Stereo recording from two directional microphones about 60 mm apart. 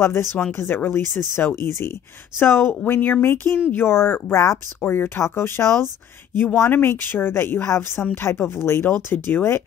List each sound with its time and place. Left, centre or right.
0.0 s speech: left